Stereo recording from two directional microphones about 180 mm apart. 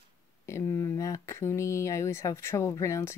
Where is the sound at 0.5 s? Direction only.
15° left (ahead or behind).